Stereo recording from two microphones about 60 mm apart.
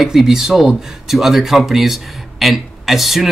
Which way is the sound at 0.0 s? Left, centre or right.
Centre.